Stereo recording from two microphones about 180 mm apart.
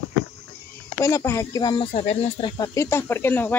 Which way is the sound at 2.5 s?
20° left (ahead or behind).